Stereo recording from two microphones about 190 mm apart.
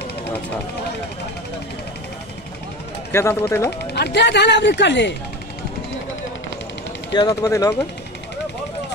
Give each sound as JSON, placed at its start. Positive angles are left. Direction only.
{"t": 3.1, "sound": "speech", "side_deg": 15}
{"t": 3.9, "sound": "speech", "side_deg": 60}
{"t": 7.1, "sound": "speech", "side_deg": 20}